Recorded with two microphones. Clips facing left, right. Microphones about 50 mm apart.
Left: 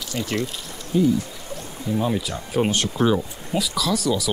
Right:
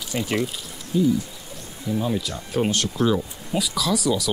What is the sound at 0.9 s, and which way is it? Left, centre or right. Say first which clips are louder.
Speech: left 1 dB; left.